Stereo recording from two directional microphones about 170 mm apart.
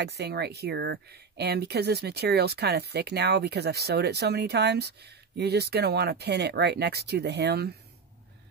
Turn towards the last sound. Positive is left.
turn(degrees=-70)  # may be behind; listen again after turning